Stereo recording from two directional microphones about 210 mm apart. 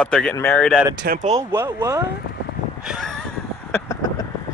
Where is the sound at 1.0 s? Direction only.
45° right (ahead or behind).